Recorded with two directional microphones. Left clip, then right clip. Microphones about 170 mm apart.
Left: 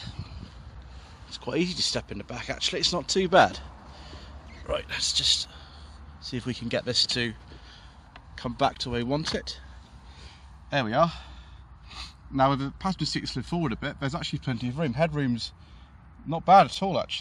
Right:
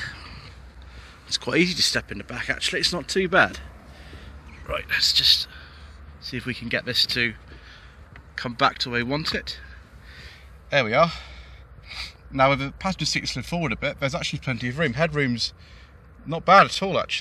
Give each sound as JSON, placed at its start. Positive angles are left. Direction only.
{"t": 0.0, "sound": "vehicle", "side_deg": 0}
{"t": 1.3, "sound": "a man's voice", "side_deg": -5}
{"t": 8.4, "sound": "speech", "side_deg": 15}
{"t": 10.1, "sound": "a sound", "side_deg": 5}
{"t": 11.9, "sound": "speech", "side_deg": 0}